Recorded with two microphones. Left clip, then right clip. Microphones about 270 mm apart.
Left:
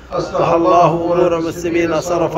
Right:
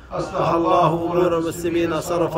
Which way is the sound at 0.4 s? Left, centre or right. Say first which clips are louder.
Left 6 dB; centre.